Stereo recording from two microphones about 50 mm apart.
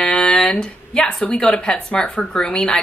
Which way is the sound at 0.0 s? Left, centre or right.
Centre.